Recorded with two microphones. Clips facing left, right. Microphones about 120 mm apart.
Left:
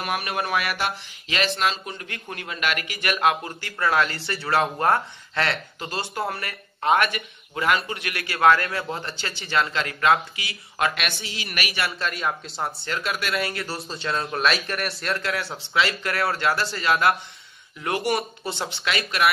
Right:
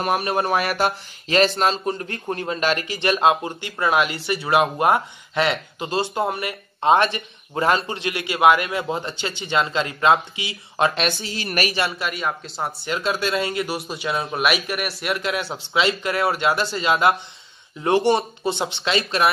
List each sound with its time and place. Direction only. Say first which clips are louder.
0.0 s speech: right 6 dB; 35° right (ahead or behind)
12.0 s speech: right 1 dB; centre (ahead or behind)
12.8 s speech: right 5 dB; 20° right (ahead or behind)
15.1 s speech: right 3 dB; 20° right (ahead or behind)